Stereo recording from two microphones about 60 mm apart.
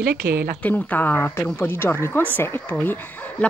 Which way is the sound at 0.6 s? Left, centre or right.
Left.